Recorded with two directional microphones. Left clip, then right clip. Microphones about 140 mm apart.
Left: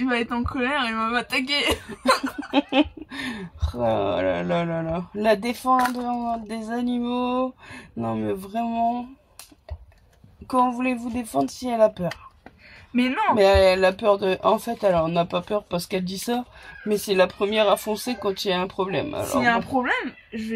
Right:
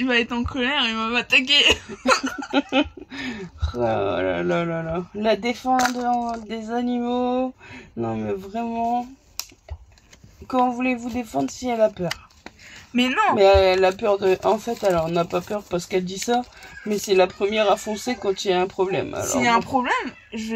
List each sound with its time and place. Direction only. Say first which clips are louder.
0.0 s speech: right 3 dB; 30° left (ahead or behind)
2.5 s speech: even; centre (ahead or behind)
10.8 s speech: right 2 dB; 5° right (ahead or behind)
12.9 s speech: right 2 dB; 15° left (ahead or behind)
13.4 s speech: right 1 dB; 5° right (ahead or behind)
19.2 s speech: right 2 dB; 15° left (ahead or behind)